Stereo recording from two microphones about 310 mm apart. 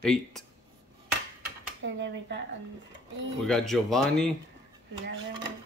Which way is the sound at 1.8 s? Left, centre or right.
Right.